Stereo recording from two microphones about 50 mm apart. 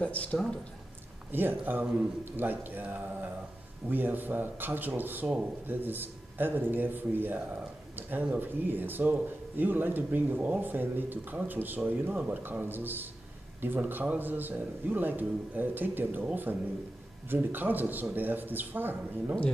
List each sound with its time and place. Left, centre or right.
0.0 s speech: left
1.3 s a man's voice: right